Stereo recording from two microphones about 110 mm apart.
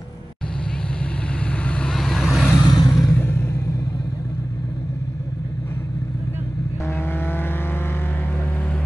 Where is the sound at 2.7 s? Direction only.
30° left (ahead or behind).